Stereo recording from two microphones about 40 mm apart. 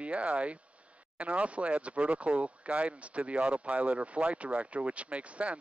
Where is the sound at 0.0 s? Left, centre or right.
Right.